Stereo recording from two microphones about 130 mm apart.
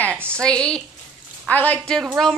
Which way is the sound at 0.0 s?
15° right (ahead or behind).